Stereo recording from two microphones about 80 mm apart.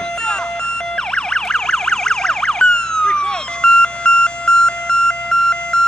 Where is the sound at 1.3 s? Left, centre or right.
Centre.